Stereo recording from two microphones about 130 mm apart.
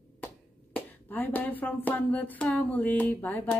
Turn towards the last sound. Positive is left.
turn(degrees=15)  # may be behind; listen again after turning